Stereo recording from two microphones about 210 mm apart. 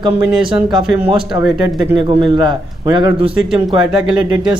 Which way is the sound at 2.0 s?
20° right (ahead or behind).